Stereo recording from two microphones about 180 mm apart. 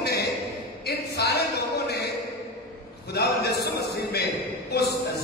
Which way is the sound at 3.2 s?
60° left (ahead or behind).